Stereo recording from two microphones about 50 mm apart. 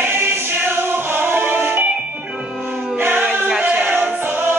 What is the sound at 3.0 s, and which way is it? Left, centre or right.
Choir, right.